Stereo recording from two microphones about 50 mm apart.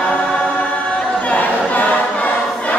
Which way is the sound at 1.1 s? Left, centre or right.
Left.